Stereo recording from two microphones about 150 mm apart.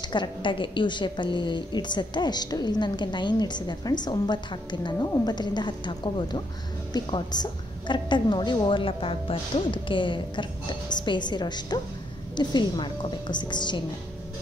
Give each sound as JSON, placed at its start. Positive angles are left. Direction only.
{"t": 0.1, "sound": "a woman's voice", "side_deg": 30}